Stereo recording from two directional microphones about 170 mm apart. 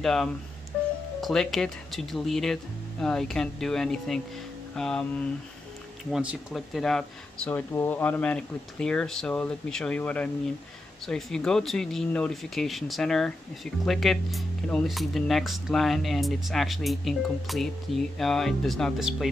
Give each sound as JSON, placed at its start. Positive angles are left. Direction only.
{"t": 0.0, "sound": "speech", "side_deg": 0}